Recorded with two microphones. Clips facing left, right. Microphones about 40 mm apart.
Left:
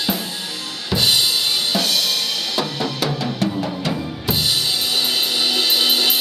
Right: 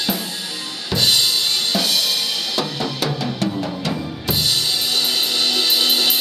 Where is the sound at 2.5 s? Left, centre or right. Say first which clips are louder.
Left 1 dB; centre.